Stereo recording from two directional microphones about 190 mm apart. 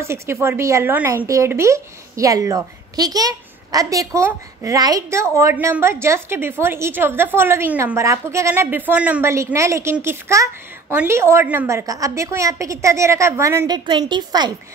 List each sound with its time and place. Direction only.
0.0 s speech: 15° right (ahead or behind)